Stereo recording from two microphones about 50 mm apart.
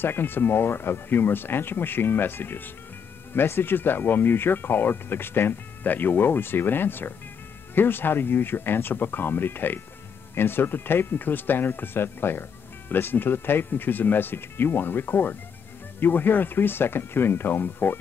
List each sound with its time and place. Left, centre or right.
0.0 s speech: left